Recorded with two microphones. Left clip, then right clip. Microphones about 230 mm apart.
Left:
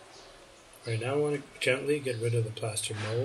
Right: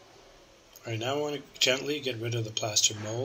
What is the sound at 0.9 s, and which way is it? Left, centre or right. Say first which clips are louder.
Speech: left 1 dB; right.